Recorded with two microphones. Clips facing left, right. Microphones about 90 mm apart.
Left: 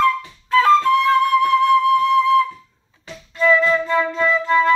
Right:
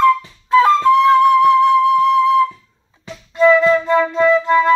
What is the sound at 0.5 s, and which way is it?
Flute, 20° right (ahead or behind).